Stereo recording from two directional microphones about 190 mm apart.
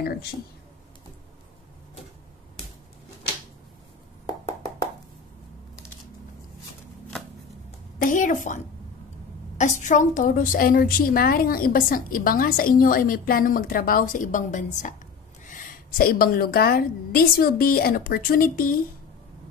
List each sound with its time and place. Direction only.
8.0 s a woman's voice: 45° left (ahead or behind)
9.6 s a woman's voice: 40° left (ahead or behind)